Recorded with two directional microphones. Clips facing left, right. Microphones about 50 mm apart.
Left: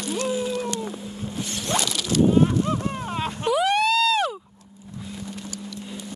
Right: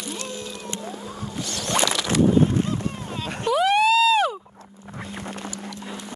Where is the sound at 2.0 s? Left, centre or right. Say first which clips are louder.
Left 2 dB; right.